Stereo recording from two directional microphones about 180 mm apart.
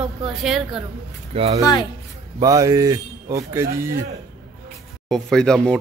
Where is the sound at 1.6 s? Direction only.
20° left (ahead or behind).